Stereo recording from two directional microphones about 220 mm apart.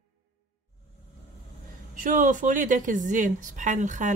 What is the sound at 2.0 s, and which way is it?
Speech, 35° right (ahead or behind).